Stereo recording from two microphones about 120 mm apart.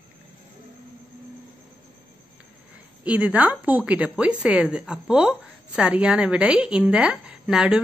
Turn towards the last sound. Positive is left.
turn(degrees=-5)  # may be behind; listen again after turning